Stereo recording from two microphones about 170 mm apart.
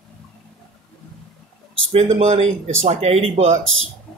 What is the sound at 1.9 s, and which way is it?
Speech, 40° right (ahead or behind).